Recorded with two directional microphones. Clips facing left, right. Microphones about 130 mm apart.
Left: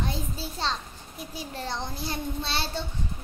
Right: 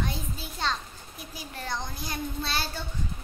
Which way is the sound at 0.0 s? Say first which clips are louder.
Left 2 dB; 30° left (ahead or behind).